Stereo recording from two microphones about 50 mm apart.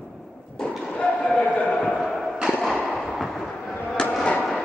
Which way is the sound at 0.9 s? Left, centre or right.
Centre.